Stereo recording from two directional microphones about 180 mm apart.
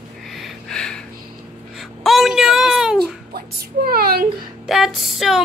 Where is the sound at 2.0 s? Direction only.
Centre (ahead or behind).